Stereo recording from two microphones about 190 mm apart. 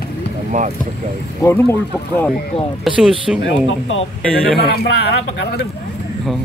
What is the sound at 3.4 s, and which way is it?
Speech, 90° left.